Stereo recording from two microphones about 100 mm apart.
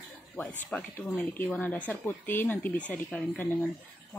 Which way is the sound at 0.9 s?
20° left (ahead or behind).